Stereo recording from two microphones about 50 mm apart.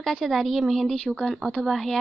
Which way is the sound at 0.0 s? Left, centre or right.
Centre.